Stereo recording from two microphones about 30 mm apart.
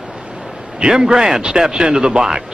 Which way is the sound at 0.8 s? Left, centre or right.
Right.